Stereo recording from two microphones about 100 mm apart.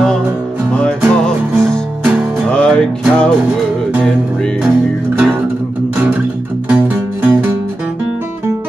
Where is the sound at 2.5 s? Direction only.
10° left (ahead or behind).